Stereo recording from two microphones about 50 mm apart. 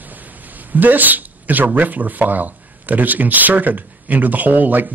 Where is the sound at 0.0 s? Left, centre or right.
Right.